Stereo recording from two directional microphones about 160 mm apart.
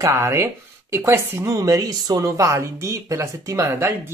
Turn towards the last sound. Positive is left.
turn(degrees=-15)  # may be behind; listen again after turning